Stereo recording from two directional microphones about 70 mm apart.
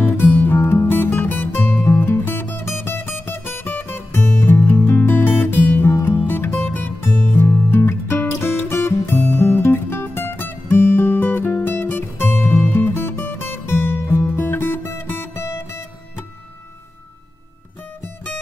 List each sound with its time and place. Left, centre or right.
0.0 s music: left
4.8 s guitar: left
6.1 s music: left